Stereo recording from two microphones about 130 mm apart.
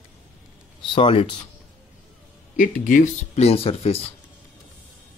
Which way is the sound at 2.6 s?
90° left.